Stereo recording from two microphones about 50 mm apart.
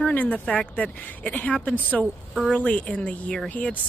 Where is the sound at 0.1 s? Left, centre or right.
Left.